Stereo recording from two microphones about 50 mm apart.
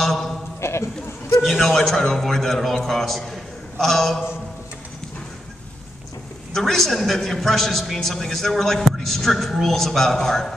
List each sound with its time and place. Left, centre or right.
0.0 s a sound: centre
0.6 s clip-clop: left
1.6 s a man's voice: centre
6.5 s a man's voice: centre